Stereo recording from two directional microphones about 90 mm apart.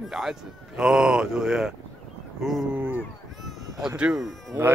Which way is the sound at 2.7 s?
20° right (ahead or behind).